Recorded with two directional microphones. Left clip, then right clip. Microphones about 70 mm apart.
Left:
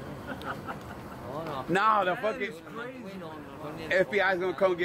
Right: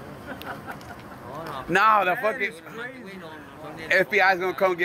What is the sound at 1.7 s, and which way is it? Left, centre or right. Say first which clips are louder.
Speech: right 6 dB; right.